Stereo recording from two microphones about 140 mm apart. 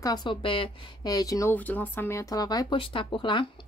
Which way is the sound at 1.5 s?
10° left (ahead or behind).